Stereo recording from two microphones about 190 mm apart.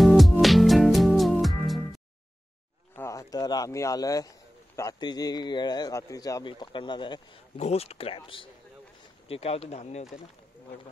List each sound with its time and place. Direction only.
0.0 s music: centre (ahead or behind)
3.0 s speech: 15° left (ahead or behind); by 10.0 s 35° left (ahead or behind)